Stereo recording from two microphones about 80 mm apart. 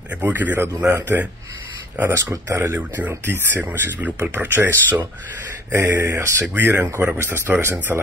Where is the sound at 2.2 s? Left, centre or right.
Right.